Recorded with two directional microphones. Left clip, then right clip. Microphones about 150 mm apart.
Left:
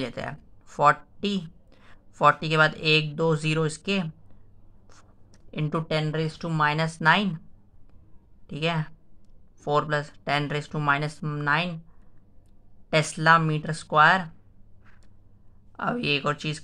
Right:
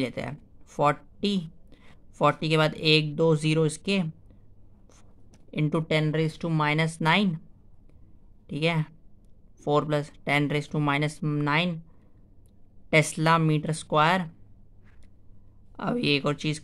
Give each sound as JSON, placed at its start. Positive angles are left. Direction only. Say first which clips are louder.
{"t": 0.0, "sound": "speech", "louder": "right 1 dB", "side_deg": -45}
{"t": 5.5, "sound": "speech", "louder": "right 1 dB", "side_deg": -50}
{"t": 8.5, "sound": "speech", "louder": "right 1 dB", "side_deg": -45}
{"t": 12.9, "sound": "speech", "louder": "left 2 dB", "side_deg": -50}
{"t": 15.7, "sound": "speech", "louder": "even", "side_deg": -50}